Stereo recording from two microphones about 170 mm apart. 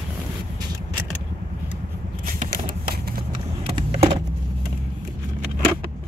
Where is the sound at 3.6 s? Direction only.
35° right (ahead or behind).